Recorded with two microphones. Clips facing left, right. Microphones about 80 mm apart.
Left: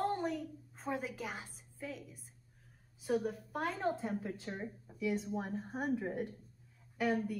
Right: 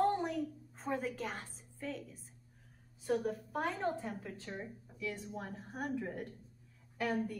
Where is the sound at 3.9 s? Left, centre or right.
Centre.